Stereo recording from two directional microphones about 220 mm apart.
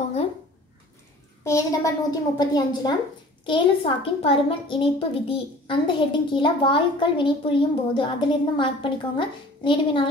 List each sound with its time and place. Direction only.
1.4 s a woman's voice: 15° left (ahead or behind)